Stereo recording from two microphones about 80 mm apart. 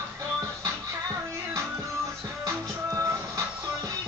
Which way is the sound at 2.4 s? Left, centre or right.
Right.